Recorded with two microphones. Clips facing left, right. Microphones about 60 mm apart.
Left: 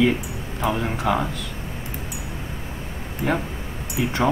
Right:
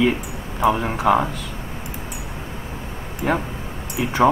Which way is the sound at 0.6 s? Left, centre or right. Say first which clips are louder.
Right 5 dB; centre.